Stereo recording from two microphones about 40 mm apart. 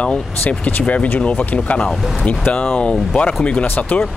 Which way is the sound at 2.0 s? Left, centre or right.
Centre.